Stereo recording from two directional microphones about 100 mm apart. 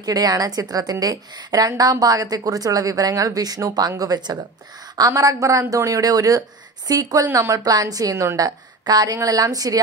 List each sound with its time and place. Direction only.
0.0 s a woman's voice: 40° right (ahead or behind)